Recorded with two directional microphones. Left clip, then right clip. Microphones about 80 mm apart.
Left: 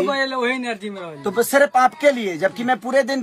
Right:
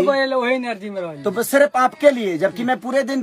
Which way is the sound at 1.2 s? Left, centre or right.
Right.